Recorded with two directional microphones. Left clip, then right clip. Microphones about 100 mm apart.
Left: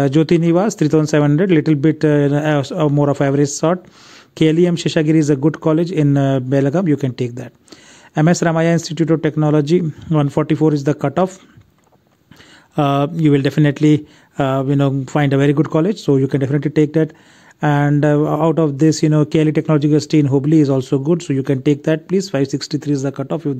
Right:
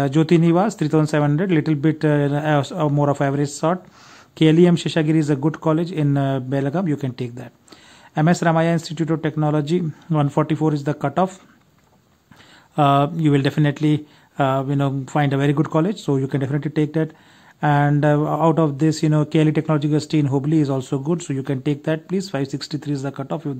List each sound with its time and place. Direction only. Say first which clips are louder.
0.0 s a man's voice: left 3 dB; 35° left (ahead or behind)
12.7 s a man's voice: even; 40° left (ahead or behind)